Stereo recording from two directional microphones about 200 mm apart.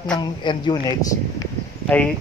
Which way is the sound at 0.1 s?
20° left (ahead or behind).